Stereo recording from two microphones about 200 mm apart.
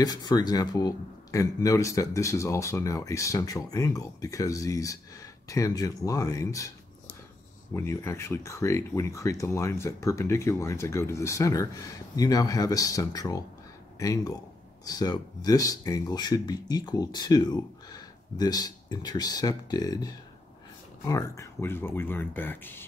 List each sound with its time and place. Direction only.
0.0 s speech: 20° left (ahead or behind)
7.7 s speech: 15° left (ahead or behind)